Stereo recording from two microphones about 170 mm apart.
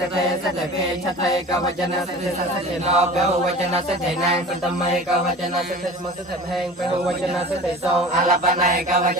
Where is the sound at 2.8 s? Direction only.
40° right (ahead or behind).